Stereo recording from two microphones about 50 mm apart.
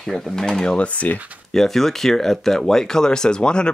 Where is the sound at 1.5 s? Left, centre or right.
Centre.